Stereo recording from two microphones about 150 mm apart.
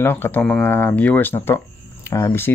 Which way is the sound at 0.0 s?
15° left (ahead or behind).